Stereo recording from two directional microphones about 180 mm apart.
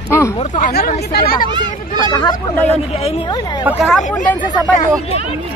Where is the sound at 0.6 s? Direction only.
55° left (ahead or behind).